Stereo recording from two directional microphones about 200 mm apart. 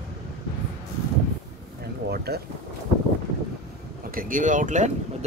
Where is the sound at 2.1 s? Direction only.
50° right (ahead or behind).